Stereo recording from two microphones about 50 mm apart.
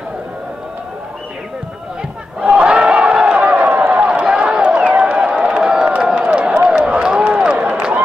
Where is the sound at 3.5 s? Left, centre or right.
Right.